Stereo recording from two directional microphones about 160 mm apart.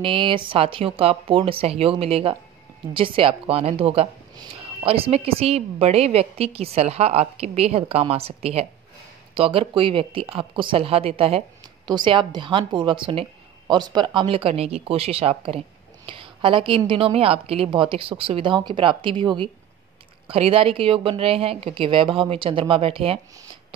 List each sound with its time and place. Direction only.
0.0 s a woman's voice: 30° right (ahead or behind)